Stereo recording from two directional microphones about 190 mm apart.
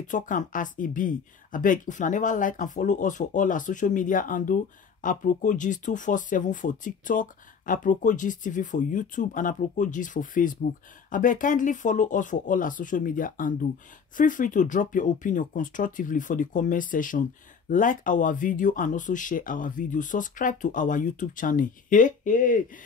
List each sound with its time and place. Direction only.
0.1 s speech: 40° left (ahead or behind)